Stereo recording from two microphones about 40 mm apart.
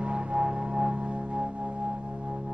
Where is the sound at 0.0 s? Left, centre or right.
Right.